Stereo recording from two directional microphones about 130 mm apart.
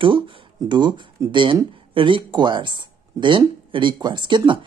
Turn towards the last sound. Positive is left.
turn(degrees=-40)  # may be behind; listen again after turning